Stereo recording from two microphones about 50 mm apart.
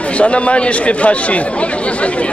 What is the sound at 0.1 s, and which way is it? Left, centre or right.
Speech, left.